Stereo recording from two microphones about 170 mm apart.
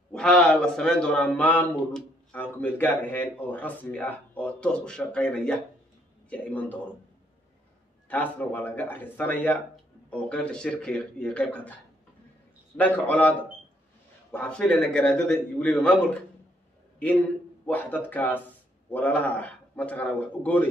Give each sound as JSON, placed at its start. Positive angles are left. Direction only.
{"t": 0.1, "sound": "a man's voice", "side_deg": 5}
{"t": 8.1, "sound": "a man's voice", "side_deg": 10}
{"t": 14.3, "sound": "a man's voice", "side_deg": 5}
{"t": 17.6, "sound": "a man's voice", "side_deg": 10}